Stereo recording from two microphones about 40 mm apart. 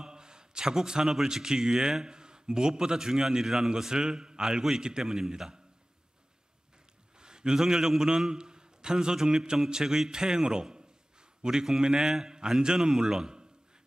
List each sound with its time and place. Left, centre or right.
0.0 s a sound: centre
1.1 s a man's voice: centre
7.2 s a man's voice: centre